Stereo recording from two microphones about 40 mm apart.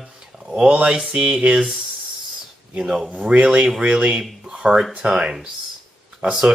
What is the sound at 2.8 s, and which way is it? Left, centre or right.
Speech, centre.